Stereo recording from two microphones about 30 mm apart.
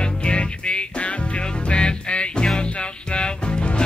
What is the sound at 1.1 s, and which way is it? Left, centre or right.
Music, left.